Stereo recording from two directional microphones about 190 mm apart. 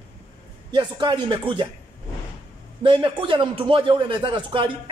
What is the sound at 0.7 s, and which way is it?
Speech, 25° right (ahead or behind).